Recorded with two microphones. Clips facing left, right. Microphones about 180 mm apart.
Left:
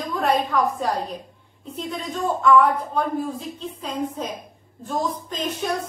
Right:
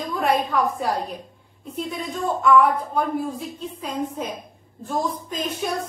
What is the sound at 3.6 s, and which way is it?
A woman's voice, 10° right (ahead or behind).